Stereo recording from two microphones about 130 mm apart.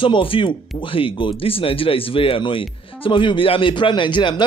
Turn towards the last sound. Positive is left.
turn(degrees=35)  # may be behind; listen again after turning